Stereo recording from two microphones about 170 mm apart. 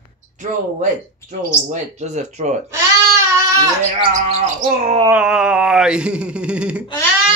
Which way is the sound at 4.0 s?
40° right (ahead or behind).